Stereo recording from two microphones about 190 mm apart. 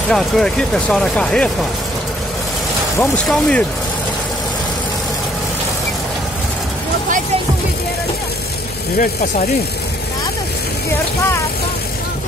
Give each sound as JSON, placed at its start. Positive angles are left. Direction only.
{"t": 0.1, "sound": "speech", "side_deg": 5}
{"t": 3.0, "sound": "speech", "side_deg": 5}
{"t": 8.9, "sound": "speech", "side_deg": 45}